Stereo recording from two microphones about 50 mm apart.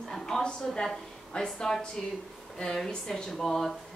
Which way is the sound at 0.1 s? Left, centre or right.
Centre.